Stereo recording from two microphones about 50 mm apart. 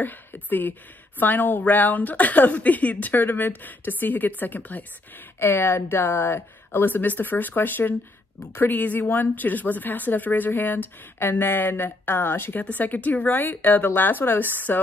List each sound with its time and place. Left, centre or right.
0.0 s a woman's voice: left
12.5 s a woman's voice: left